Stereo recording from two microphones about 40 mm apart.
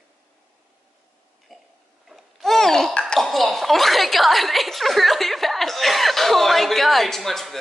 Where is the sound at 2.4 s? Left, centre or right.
Centre.